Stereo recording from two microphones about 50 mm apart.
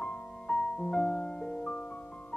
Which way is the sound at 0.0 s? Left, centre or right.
Centre.